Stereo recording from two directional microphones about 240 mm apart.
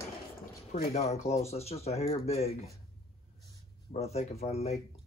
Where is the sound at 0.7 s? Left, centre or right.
Left.